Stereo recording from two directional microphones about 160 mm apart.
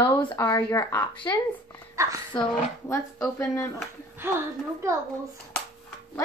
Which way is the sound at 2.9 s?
20° left (ahead or behind).